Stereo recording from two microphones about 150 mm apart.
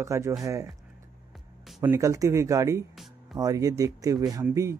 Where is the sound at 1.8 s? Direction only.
20° right (ahead or behind).